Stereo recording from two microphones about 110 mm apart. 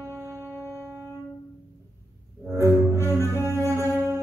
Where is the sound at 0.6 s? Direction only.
25° left (ahead or behind).